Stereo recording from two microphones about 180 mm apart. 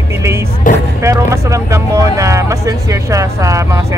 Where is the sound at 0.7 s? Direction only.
45° left (ahead or behind).